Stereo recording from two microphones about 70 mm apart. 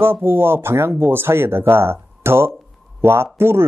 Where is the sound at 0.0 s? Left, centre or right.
Right.